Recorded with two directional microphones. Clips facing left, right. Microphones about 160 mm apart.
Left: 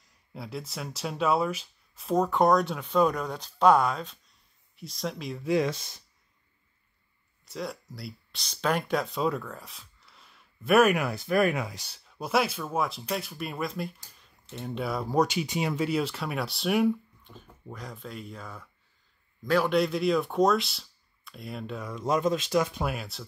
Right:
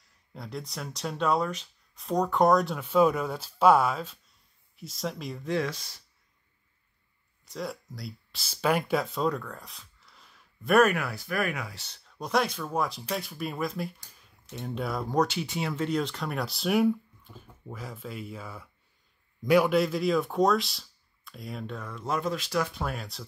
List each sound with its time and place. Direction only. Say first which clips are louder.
0.3 s speech: left 1 dB; 5° left (ahead or behind)
5.5 s speech: left 4 dB; 20° left (ahead or behind)
7.4 s speech: even; centre (ahead or behind)
10.9 s speech: left 4 dB; 20° left (ahead or behind)
11.8 s speech: left 1 dB; 10° left (ahead or behind)
15.1 s a man's voice: left 2 dB; 15° left (ahead or behind); by 19.8 s 10° right (ahead or behind)
19.8 s speech: left 1 dB; centre (ahead or behind); by 22.8 s 20° left (ahead or behind)
22.8 s speech: left 2 dB; 5° left (ahead or behind)